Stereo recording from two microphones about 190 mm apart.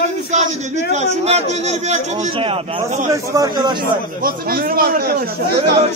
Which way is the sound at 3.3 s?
20° right (ahead or behind).